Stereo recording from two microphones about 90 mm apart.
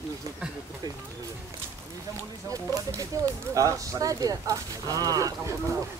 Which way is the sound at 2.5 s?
40° right (ahead or behind).